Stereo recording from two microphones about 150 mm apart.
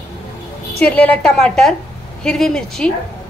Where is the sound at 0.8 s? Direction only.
10° left (ahead or behind).